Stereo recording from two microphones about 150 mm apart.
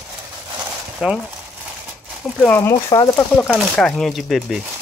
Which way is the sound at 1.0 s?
5° right (ahead or behind).